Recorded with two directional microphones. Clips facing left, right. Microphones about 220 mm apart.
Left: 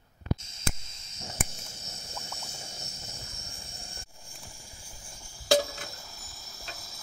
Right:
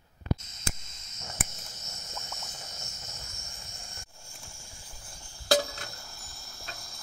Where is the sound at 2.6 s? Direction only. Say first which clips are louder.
Left 2 dB; 30° left (ahead or behind).